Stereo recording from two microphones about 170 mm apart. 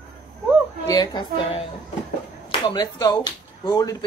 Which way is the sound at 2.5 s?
25° left (ahead or behind).